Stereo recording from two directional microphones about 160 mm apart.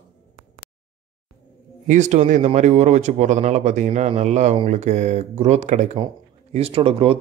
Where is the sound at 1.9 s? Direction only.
50° right (ahead or behind).